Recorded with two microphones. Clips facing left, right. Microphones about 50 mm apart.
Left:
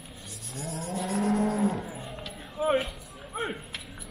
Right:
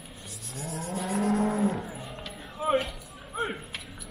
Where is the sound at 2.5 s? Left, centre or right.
Centre.